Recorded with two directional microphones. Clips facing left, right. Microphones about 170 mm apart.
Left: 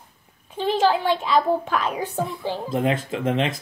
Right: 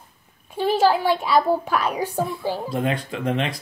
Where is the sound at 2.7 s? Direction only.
20° left (ahead or behind).